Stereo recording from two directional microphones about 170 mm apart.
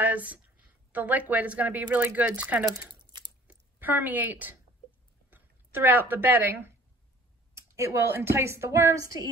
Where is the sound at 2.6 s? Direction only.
25° right (ahead or behind).